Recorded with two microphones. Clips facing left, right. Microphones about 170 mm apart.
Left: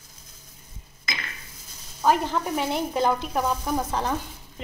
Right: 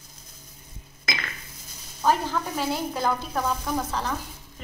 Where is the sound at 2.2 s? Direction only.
20° left (ahead or behind).